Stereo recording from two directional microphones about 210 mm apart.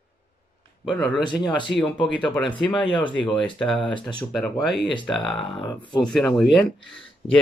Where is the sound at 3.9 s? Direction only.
20° left (ahead or behind).